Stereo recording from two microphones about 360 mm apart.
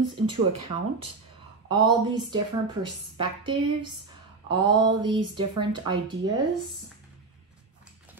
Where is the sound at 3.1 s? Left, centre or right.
Centre.